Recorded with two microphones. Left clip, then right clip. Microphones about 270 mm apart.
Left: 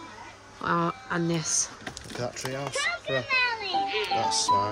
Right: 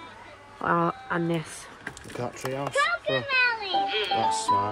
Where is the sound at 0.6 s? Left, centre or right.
Centre.